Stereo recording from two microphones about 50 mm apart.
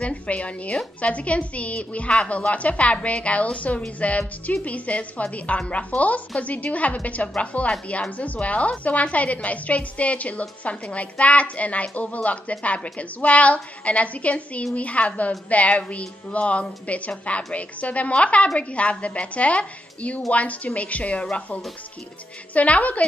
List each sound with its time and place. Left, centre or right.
0.0 s a woman's voice: left